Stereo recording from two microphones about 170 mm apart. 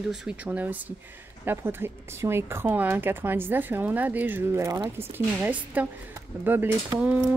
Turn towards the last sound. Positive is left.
turn(degrees=-10)  # may be behind; listen again after turning